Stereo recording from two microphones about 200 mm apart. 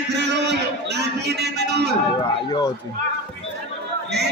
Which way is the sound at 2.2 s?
20° left (ahead or behind).